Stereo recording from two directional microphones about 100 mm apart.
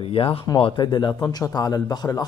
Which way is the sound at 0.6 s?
50° left (ahead or behind).